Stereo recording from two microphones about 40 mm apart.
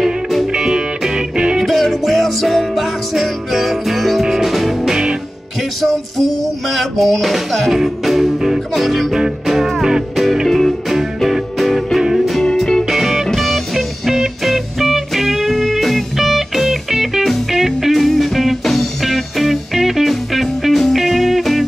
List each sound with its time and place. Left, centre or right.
0.0 s music: centre
0.5 s music: centre
1.6 s music: centre